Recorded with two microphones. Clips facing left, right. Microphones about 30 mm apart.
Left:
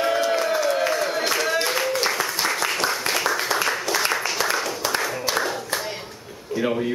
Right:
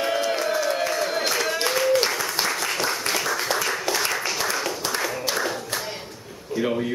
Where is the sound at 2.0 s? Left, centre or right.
Centre.